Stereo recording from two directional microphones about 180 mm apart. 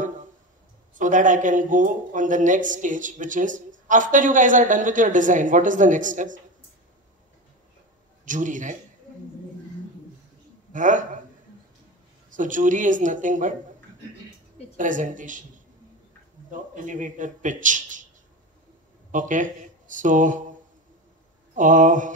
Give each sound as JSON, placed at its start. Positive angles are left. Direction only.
{"t": 0.9, "sound": "a man's voice", "side_deg": -45}
{"t": 8.3, "sound": "a man's voice", "side_deg": -45}
{"t": 10.7, "sound": "a man's voice", "side_deg": -45}
{"t": 12.3, "sound": "a man's voice", "side_deg": -45}
{"t": 14.8, "sound": "a man's voice", "side_deg": -45}
{"t": 16.4, "sound": "a man's voice", "side_deg": -45}
{"t": 19.1, "sound": "speech", "side_deg": -45}
{"t": 21.5, "sound": "a man's voice", "side_deg": -45}